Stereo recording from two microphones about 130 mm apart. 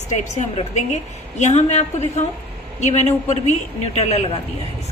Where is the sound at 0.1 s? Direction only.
65° left (ahead or behind).